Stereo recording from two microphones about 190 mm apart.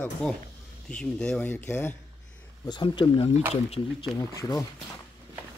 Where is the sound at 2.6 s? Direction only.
25° left (ahead or behind).